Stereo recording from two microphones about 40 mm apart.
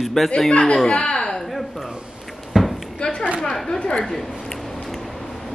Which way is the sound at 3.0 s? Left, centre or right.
Left.